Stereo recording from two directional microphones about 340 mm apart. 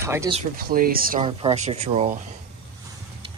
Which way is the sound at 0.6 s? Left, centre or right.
Right.